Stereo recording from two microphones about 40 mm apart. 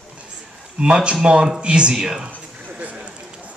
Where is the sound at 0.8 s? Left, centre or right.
Right.